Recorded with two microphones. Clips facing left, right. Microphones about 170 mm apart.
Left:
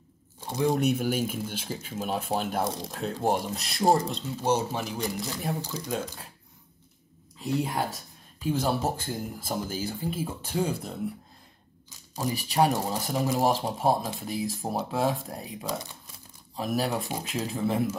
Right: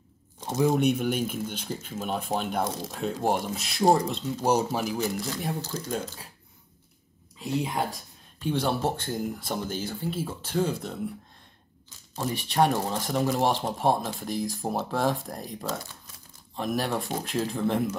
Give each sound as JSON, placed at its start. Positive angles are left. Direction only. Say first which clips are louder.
{"t": 0.4, "sound": "a sound", "louder": "right 3 dB", "side_deg": -15}
{"t": 0.7, "sound": "speech", "louder": "even", "side_deg": 0}
{"t": 4.4, "sound": "speech", "louder": "right 2 dB", "side_deg": -10}
{"t": 7.3, "sound": "speech", "louder": "even", "side_deg": 0}
{"t": 12.3, "sound": "speech", "louder": "even", "side_deg": 5}
{"t": 15.6, "sound": "speech", "louder": "left 1 dB", "side_deg": 15}
{"t": 16.5, "sound": "speech", "louder": "even", "side_deg": 5}